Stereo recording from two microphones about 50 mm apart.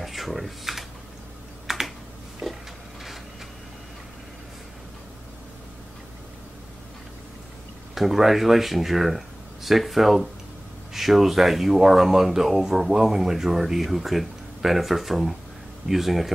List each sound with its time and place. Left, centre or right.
0.0 s computer keyboard: centre
7.9 s speech: centre